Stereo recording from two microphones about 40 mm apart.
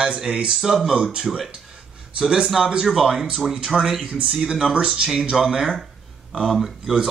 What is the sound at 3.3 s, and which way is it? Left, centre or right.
Speech, centre.